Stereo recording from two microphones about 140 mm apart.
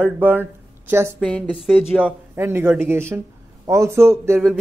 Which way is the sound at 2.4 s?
15° right (ahead or behind).